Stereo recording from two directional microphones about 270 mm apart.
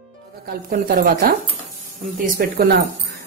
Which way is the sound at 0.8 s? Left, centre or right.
Right.